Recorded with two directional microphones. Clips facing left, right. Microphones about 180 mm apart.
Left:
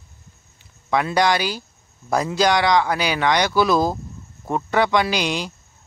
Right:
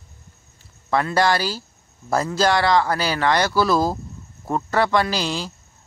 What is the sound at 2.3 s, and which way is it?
Speech, 5° right (ahead or behind).